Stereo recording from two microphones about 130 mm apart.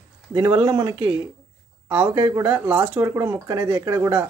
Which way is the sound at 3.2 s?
30° right (ahead or behind).